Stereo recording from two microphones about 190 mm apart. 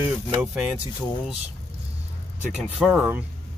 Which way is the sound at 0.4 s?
5° right (ahead or behind).